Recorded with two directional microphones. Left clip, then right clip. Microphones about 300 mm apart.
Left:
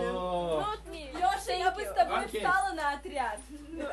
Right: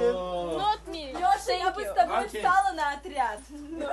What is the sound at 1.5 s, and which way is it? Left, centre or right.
Speech, right.